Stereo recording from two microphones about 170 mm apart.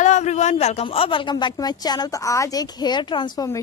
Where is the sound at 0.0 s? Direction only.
45° left (ahead or behind).